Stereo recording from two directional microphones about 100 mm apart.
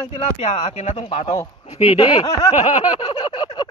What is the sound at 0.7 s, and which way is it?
Speech, 80° left.